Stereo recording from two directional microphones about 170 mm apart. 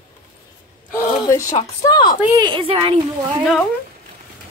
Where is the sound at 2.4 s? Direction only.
30° right (ahead or behind).